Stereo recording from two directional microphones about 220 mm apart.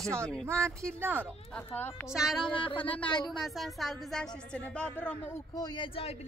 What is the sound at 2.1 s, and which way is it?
A man's voice, centre (ahead or behind).